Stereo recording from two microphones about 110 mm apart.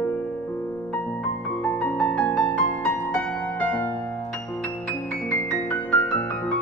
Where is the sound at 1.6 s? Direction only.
10° left (ahead or behind).